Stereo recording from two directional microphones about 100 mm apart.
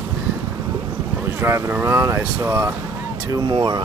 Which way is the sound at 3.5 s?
50° right (ahead or behind).